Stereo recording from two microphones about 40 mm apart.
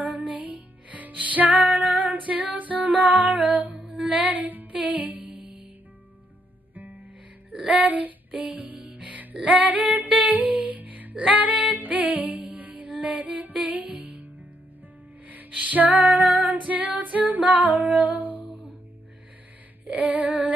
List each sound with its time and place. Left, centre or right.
0.0 s music: right
4.7 s music: right
6.7 s music: right
7.7 s a sound: right
8.3 s music: right
15.5 s female singing: right
19.9 s female singing: right